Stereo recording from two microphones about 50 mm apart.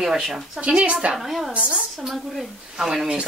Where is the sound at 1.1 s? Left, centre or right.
Centre.